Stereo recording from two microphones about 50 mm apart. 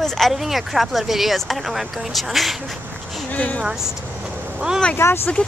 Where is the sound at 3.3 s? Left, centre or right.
Left.